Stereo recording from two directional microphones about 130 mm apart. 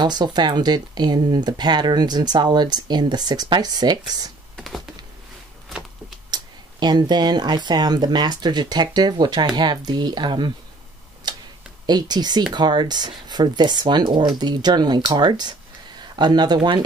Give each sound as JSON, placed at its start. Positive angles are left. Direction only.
{"t": 0.0, "sound": "speech", "side_deg": -35}
{"t": 4.6, "sound": "computer keyboard", "side_deg": 0}
{"t": 5.7, "sound": "a sound", "side_deg": 0}
{"t": 6.3, "sound": "speech", "side_deg": -35}
{"t": 11.3, "sound": "tick-tock", "side_deg": -35}
{"t": 11.8, "sound": "speech", "side_deg": -30}